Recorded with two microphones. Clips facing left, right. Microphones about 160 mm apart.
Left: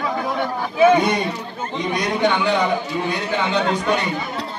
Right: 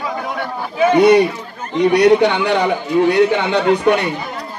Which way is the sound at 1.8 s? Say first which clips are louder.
Right 10 dB; 70° right (ahead or behind).